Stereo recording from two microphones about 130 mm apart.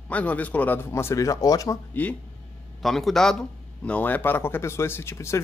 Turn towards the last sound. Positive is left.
turn(degrees=20)  # may be behind; listen again after turning